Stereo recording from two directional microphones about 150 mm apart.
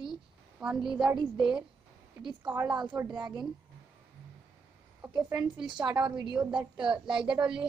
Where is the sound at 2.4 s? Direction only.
15° right (ahead or behind).